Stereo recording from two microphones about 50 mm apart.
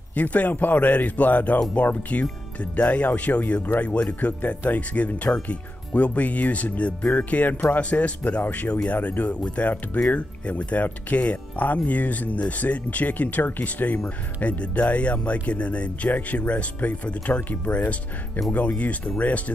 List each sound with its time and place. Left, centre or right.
0.1 s speech: left
13.9 s speech: left